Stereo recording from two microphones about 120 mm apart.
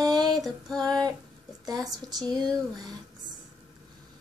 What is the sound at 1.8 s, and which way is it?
Child singing, 30° right (ahead or behind).